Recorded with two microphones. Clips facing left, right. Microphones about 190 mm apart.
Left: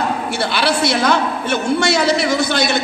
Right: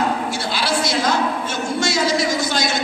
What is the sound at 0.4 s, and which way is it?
A man's voice, 65° left (ahead or behind).